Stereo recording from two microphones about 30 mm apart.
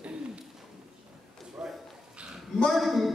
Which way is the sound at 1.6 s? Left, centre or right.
Centre.